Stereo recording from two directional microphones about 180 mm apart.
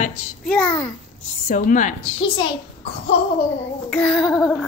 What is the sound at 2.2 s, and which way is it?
Speech, 25° left (ahead or behind).